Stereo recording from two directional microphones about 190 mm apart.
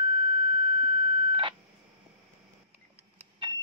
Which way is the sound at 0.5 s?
25° right (ahead or behind).